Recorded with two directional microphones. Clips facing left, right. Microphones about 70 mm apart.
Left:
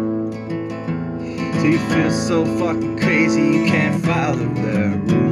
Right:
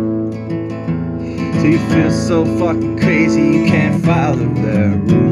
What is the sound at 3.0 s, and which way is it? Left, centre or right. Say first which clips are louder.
Music: right 4 dB; right.